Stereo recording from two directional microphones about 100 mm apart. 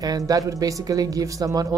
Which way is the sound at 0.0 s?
40° right (ahead or behind).